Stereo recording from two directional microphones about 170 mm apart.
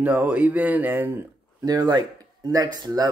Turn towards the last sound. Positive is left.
turn(degrees=-25)  # may be behind; listen again after turning